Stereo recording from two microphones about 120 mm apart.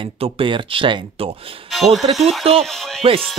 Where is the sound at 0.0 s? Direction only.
45° right (ahead or behind).